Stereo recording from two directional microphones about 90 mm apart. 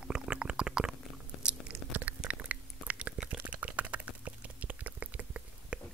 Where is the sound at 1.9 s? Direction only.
15° right (ahead or behind).